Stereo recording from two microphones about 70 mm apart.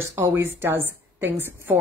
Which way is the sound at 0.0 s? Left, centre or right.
Right.